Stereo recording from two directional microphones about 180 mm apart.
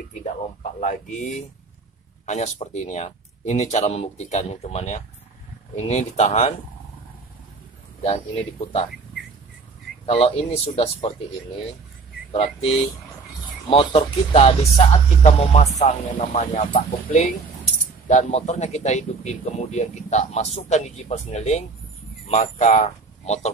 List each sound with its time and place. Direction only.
0.1 s speech: 40° left (ahead or behind)
8.0 s speech: 30° left (ahead or behind)
10.0 s speech: 30° left (ahead or behind)
12.3 s a man's voice: 35° left (ahead or behind)